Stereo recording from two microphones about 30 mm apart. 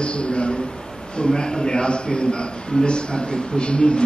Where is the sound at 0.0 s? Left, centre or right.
Left.